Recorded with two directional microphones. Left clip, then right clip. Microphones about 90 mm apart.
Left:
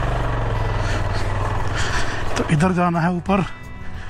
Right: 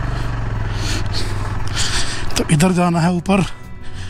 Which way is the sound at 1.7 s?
35° right (ahead or behind).